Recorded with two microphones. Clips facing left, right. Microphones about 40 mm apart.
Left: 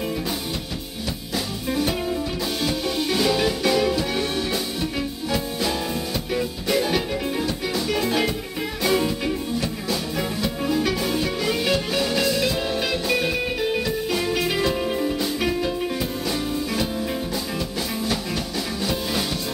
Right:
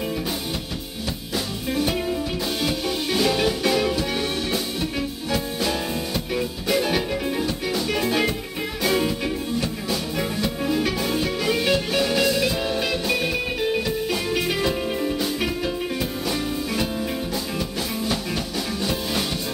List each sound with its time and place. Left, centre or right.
1.7 s music: centre